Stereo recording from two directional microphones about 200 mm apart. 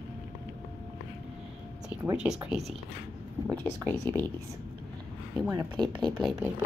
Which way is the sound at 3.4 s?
10° left (ahead or behind).